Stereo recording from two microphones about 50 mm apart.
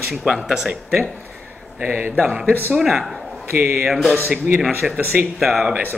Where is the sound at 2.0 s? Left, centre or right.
Right.